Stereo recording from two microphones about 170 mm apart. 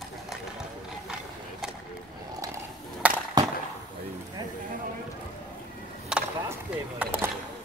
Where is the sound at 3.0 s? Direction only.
10° right (ahead or behind).